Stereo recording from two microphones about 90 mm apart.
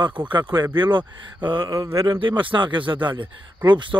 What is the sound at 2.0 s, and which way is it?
Speech, 60° right (ahead or behind).